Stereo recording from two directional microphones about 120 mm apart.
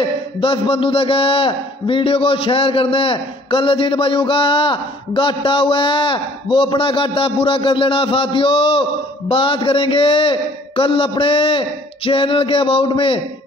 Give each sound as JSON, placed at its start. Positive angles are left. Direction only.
{"t": 0.4, "sound": "a man's voice", "side_deg": 50}